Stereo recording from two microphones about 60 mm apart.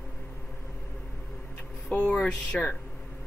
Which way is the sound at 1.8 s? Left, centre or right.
Left.